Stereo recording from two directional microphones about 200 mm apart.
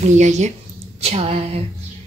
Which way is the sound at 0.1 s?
35° right (ahead or behind).